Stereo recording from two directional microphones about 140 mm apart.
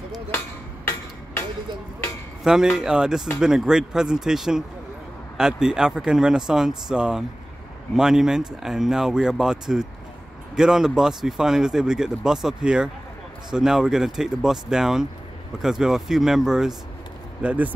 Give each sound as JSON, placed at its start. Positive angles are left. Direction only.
{"t": 2.4, "sound": "speech", "side_deg": -5}